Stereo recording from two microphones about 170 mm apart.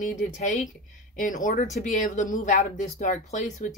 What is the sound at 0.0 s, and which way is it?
Speech, 45° left (ahead or behind).